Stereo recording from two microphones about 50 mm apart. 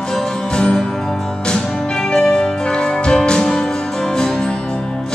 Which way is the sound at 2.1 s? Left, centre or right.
Centre.